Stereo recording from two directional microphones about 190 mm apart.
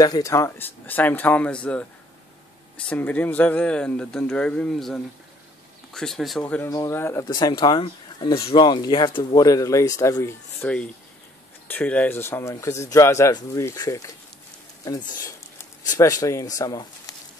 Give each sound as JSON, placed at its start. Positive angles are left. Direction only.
{"t": 0.0, "sound": "speech", "side_deg": 20}
{"t": 2.9, "sound": "speech", "side_deg": 10}